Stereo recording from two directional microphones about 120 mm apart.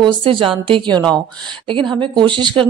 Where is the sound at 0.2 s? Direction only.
45° right (ahead or behind).